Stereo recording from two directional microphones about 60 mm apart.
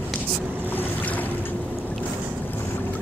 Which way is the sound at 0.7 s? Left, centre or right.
Left.